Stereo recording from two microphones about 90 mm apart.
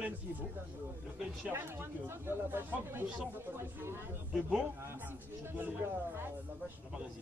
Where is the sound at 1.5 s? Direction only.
30° right (ahead or behind).